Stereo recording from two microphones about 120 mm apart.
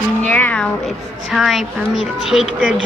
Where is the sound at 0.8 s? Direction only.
Centre (ahead or behind).